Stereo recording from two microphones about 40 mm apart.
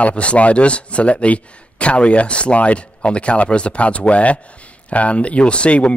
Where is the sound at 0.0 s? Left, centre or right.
Left.